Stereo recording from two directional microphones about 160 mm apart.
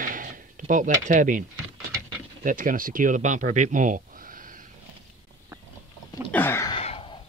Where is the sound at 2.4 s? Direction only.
60° right (ahead or behind).